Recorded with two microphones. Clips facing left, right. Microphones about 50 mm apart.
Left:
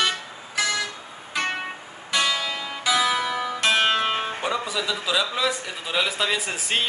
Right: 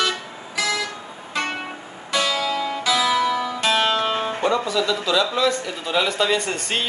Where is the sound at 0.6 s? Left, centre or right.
Centre.